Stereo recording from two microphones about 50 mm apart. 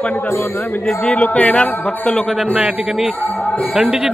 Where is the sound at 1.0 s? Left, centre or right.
Left.